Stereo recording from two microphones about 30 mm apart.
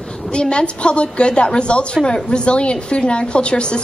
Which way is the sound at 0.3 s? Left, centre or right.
Left.